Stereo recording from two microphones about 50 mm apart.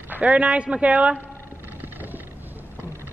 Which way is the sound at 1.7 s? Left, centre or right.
Right.